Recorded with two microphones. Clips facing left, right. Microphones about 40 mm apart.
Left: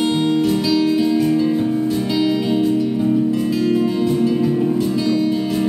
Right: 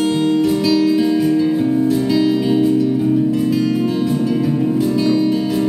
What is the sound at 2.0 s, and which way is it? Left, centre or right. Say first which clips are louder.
Music: right 3 dB; centre.